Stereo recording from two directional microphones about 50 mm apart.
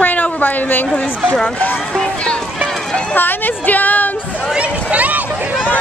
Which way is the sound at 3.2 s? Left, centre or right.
Left.